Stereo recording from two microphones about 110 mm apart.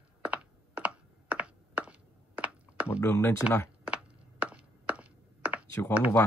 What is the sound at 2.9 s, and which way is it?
Speech, 25° left (ahead or behind).